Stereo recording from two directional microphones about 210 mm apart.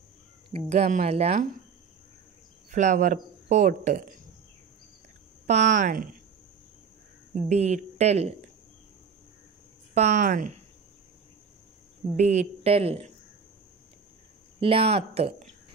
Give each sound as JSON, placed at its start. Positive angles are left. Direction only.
{"t": 0.5, "sound": "speech", "side_deg": -30}
{"t": 2.7, "sound": "speech", "side_deg": -35}
{"t": 5.5, "sound": "speech", "side_deg": -35}
{"t": 7.4, "sound": "speech", "side_deg": -35}
{"t": 9.9, "sound": "speech", "side_deg": -35}
{"t": 12.2, "sound": "speech", "side_deg": -35}
{"t": 14.6, "sound": "speech", "side_deg": -25}